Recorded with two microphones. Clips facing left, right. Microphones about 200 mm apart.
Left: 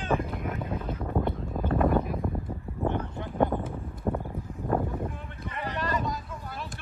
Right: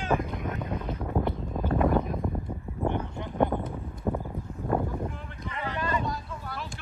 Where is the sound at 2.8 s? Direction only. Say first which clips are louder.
Even; 15° right (ahead or behind).